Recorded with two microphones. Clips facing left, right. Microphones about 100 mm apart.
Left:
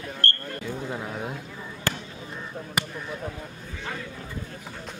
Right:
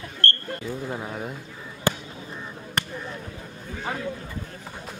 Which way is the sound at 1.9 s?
15° right (ahead or behind).